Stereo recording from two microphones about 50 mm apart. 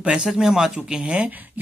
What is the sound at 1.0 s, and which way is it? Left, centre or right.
Speech, right.